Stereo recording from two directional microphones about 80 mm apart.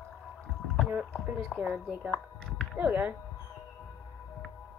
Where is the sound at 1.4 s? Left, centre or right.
Centre.